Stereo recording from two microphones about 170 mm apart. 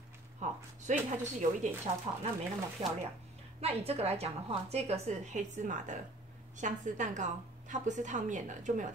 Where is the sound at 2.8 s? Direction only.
30° right (ahead or behind).